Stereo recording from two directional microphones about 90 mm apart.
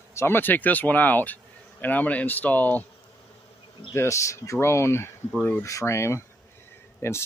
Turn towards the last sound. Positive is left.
turn(degrees=30)  # may be behind; listen again after turning